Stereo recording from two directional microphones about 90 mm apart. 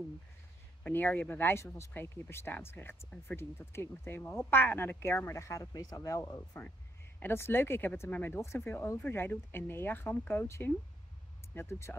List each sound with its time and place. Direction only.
0.8 s speech: 20° left (ahead or behind)
5.7 s speech: 45° left (ahead or behind)
7.2 s speech: 25° left (ahead or behind)